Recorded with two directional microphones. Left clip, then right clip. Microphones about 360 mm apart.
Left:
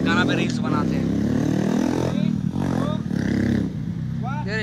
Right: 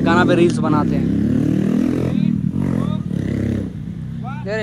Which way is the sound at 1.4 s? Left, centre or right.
Right.